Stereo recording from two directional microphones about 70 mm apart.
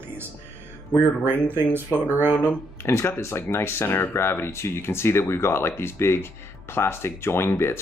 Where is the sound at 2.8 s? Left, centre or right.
Left.